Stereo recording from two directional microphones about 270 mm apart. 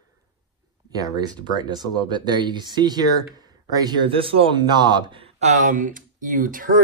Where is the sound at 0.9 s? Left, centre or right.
Centre.